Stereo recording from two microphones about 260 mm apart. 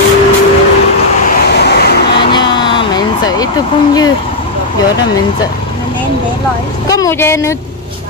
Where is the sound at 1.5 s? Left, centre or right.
Left.